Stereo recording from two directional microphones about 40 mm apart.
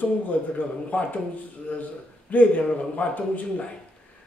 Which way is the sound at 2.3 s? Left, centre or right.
Left.